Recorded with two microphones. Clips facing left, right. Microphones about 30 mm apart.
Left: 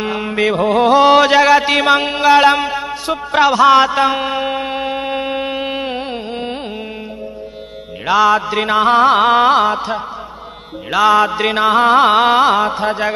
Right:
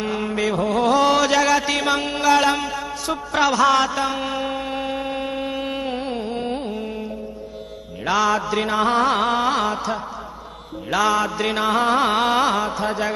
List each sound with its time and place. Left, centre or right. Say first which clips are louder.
0.0 s music: left 5 dB; left
3.4 s a sound: left 7 dB; left
8.1 s music: left 7 dB; left
12.2 s music: left 7 dB; left